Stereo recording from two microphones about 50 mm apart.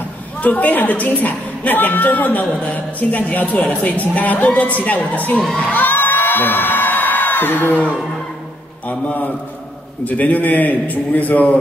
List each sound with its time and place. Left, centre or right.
0.4 s a woman's voice: left
5.6 s a sound: left
8.8 s a woman's voice: left